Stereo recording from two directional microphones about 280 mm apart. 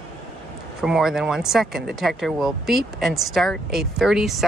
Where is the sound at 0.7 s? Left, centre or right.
Centre.